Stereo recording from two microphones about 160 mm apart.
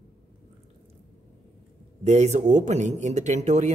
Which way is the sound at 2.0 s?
45° right (ahead or behind).